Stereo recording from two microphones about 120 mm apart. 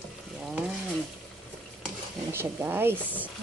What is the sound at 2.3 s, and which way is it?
Speech, 20° right (ahead or behind).